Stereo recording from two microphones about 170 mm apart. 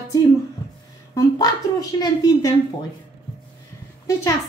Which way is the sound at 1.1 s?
20° left (ahead or behind).